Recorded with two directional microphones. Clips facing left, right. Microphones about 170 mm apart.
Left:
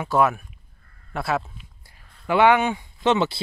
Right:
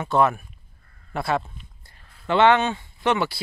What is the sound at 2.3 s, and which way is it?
Speech, 10° left (ahead or behind).